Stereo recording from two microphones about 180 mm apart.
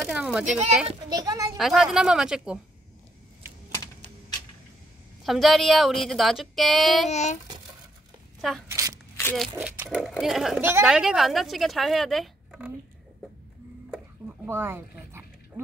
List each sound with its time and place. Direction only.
0.1 s a sound: 5° right (ahead or behind)
0.8 s a child's voice: 25° right (ahead or behind)
1.6 s a woman's voice: centre (ahead or behind)
5.2 s a woman's voice: centre (ahead or behind)
7.1 s a child's voice: 40° left (ahead or behind)
8.4 s speech: centre (ahead or behind)
8.6 s a sound: 20° right (ahead or behind)
9.2 s speech: 10° left (ahead or behind)
9.6 s a woman's voice: 5° right (ahead or behind)
14.4 s dog: 10° right (ahead or behind)